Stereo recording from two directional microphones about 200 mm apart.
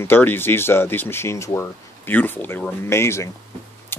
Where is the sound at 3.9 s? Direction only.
10° left (ahead or behind).